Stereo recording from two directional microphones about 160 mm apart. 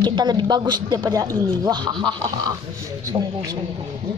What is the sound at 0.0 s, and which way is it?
Speech, 25° right (ahead or behind).